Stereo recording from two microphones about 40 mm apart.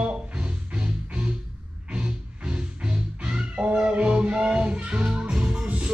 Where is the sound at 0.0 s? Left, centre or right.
Right.